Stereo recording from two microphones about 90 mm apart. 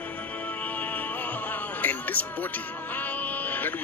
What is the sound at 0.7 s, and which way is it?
Music, 20° left (ahead or behind).